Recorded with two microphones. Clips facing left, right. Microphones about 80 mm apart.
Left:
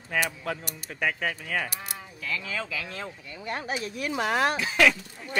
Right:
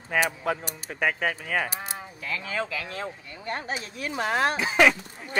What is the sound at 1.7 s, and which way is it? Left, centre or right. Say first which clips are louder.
Cattle: right 3 dB; right.